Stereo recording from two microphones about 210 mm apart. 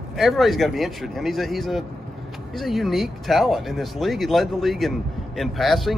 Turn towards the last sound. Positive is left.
turn(degrees=0)  # may be behind; listen again after turning